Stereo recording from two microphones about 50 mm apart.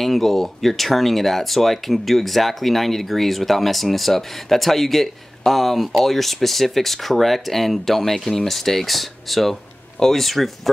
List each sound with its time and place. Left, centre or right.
0.0 s speech: centre